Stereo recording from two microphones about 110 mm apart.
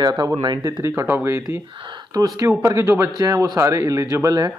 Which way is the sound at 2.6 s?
25° right (ahead or behind).